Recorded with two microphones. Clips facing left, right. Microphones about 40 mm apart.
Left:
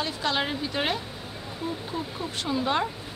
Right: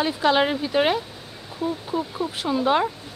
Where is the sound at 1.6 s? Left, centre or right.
Centre.